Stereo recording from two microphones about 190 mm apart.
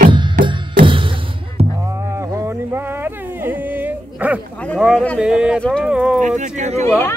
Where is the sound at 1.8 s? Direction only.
15° right (ahead or behind).